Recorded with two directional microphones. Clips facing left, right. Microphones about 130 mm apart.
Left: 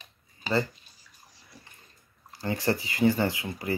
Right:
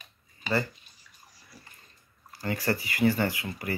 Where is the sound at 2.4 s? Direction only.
20° left (ahead or behind).